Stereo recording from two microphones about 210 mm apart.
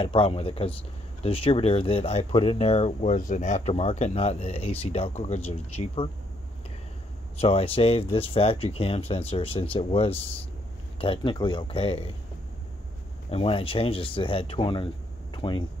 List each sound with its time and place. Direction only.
0.0 s speech: 25° left (ahead or behind)
7.3 s speech: 30° left (ahead or behind)
13.3 s speech: 25° left (ahead or behind)
15.3 s a sound: 20° left (ahead or behind)